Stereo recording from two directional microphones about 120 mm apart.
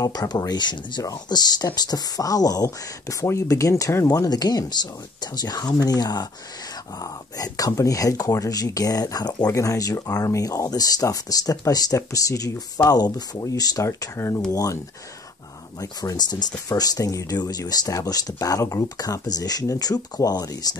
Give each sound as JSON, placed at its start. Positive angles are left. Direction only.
{"t": 0.0, "sound": "speech", "side_deg": 30}
{"t": 15.8, "sound": "speech", "side_deg": 30}